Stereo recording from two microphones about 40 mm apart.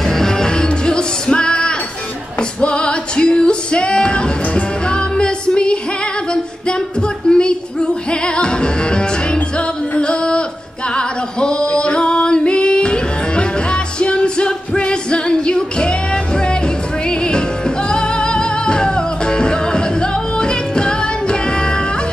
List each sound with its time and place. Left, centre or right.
0.2 s music: centre
7.0 s music: left
9.9 s a sound: left
11.0 s singing: left
14.8 s music: left
17.3 s music: left